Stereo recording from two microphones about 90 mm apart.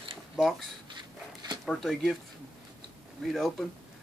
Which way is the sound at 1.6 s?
5° left (ahead or behind).